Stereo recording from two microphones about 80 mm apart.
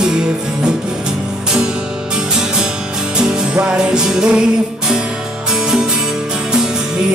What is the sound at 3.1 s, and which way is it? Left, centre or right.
Music, centre.